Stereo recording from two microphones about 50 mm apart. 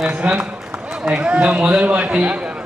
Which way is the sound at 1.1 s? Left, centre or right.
Right.